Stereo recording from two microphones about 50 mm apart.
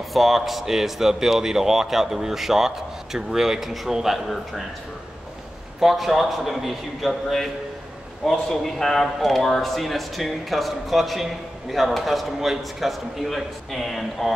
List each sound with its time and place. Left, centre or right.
0.1 s speech: centre
5.8 s speech: centre